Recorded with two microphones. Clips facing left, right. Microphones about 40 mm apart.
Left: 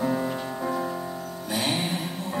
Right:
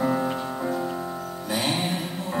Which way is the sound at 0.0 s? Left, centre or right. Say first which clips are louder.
Right 2 dB; centre.